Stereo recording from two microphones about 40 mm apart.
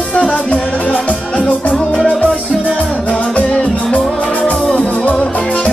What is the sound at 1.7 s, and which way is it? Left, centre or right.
Music, centre.